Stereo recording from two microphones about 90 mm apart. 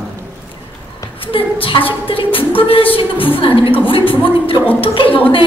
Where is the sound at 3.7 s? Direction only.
80° left.